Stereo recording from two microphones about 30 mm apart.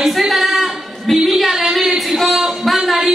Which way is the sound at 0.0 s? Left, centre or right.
Centre.